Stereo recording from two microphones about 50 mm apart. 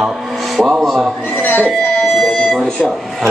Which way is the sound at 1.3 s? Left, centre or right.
Left.